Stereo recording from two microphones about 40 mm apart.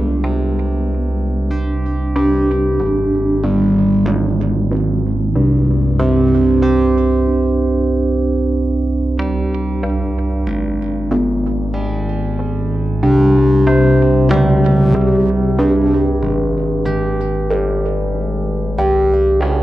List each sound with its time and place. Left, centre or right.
2.1 s music: centre
2.9 s music: centre
3.3 s music: centre
5.3 s music: centre
7.2 s music: right
13.0 s music: centre
14.2 s music: centre
15.2 s music: right
15.5 s music: centre
18.8 s synthesizer: centre